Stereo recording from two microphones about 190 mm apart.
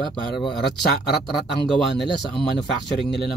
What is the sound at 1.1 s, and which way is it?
A man's voice, centre (ahead or behind).